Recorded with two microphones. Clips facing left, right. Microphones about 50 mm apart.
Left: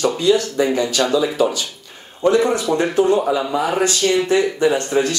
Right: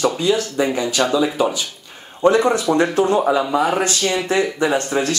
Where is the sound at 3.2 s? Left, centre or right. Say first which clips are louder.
Right 2 dB; centre.